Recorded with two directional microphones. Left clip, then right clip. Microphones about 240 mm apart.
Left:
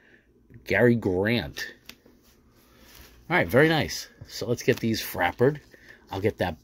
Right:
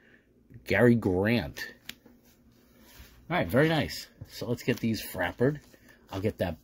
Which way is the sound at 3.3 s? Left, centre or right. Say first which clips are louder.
Left 5 dB; left.